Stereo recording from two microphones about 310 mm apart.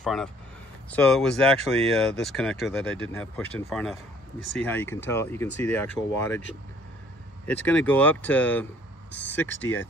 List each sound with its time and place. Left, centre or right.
0.0 s speech: centre
7.4 s speech: centre